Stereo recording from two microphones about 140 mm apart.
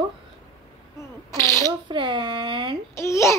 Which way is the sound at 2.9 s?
20° left (ahead or behind).